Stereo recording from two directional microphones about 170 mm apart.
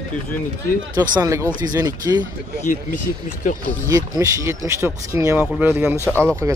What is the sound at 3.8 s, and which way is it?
Speech, 20° right (ahead or behind).